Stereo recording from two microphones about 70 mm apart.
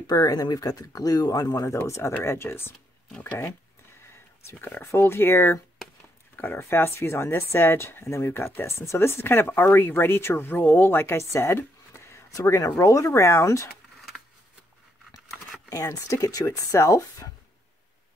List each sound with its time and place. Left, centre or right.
0.0 s speech: left
1.9 s speech: left
4.5 s speech: left
12.3 s speech: left
15.7 s speech: left